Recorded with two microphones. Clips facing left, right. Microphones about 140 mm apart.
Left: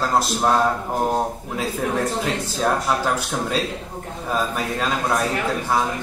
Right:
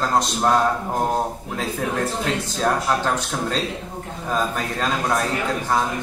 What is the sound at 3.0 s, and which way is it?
Speech, 5° left (ahead or behind).